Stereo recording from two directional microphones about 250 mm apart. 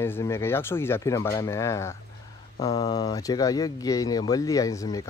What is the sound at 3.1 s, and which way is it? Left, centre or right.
Speech, centre.